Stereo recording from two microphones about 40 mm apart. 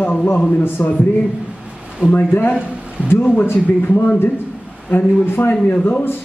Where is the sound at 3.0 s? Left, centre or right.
Right.